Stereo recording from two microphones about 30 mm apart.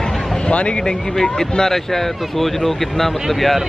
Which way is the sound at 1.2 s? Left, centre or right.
Left.